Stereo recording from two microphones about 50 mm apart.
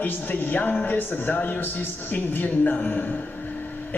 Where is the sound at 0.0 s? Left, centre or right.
Left.